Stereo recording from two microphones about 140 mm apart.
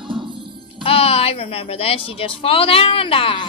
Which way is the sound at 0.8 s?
45° left (ahead or behind).